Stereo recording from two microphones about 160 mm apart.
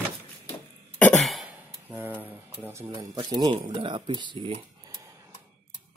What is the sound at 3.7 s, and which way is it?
Speech, 30° right (ahead or behind).